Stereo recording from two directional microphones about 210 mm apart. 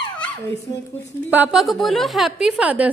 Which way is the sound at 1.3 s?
5° right (ahead or behind).